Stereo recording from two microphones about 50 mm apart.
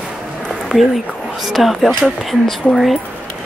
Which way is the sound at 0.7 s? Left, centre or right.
Centre.